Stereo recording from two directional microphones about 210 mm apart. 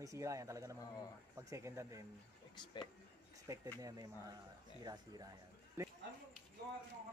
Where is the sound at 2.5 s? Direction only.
20° left (ahead or behind).